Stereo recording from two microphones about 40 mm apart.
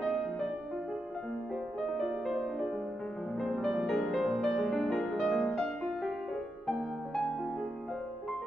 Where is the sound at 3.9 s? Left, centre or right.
Centre.